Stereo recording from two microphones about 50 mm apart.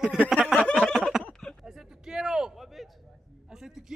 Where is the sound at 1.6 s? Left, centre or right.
Centre.